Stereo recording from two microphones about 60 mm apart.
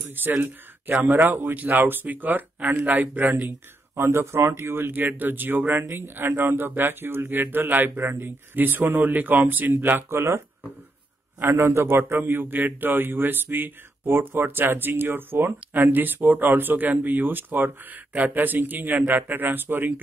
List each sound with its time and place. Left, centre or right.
0.1 s a man's voice: right
3.9 s a man's voice: right
10.0 s a man's voice: right